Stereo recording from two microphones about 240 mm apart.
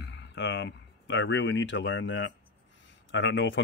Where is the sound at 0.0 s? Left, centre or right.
Left.